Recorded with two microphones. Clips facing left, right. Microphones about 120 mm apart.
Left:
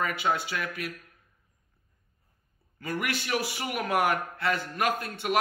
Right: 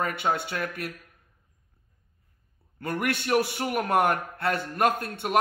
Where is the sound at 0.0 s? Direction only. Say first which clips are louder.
Right 1 dB; 50° right (ahead or behind).